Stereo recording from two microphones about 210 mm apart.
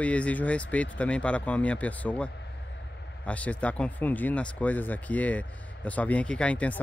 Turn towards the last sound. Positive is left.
turn(degrees=5)  # may be behind; listen again after turning